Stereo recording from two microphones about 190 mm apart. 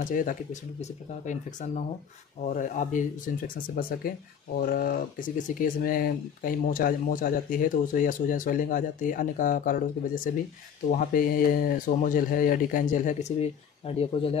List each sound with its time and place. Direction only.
0.1 s speech: 45° left (ahead or behind)